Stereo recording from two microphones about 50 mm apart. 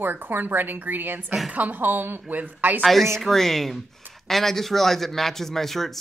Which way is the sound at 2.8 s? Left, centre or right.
Centre.